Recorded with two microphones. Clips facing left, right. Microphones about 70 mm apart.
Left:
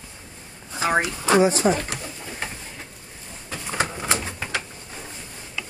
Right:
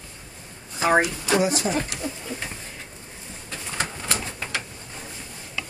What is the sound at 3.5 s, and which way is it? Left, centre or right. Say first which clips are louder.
Bird: left 4 dB; centre.